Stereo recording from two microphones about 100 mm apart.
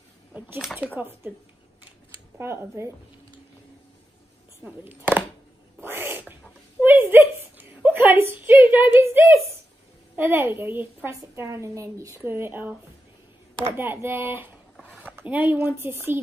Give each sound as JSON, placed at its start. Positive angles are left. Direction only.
{"t": 0.7, "sound": "speech", "side_deg": -15}
{"t": 1.9, "sound": "a sound", "side_deg": -25}
{"t": 4.6, "sound": "speech", "side_deg": -15}
{"t": 5.8, "sound": "cat", "side_deg": -20}
{"t": 6.8, "sound": "a sound", "side_deg": -20}
{"t": 10.1, "sound": "a woman's voice", "side_deg": -20}
{"t": 13.7, "sound": "a woman's voice", "side_deg": -20}